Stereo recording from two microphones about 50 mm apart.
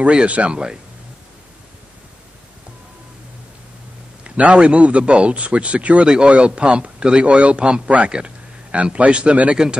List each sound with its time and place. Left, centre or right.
0.0 s a man's voice: right
4.4 s a man's voice: right